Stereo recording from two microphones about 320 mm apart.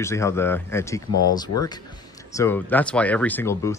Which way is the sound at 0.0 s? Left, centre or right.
Centre.